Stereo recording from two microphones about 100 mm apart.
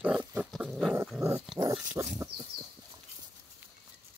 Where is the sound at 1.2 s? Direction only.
30° right (ahead or behind).